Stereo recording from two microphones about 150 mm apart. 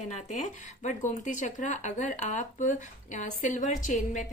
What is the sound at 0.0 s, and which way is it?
Speech, 55° left (ahead or behind).